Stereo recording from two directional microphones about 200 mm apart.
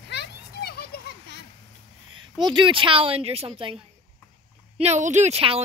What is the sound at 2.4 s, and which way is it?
A woman's voice, 25° right (ahead or behind).